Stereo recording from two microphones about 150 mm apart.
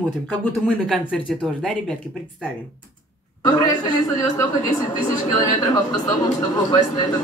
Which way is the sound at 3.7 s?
25° left (ahead or behind).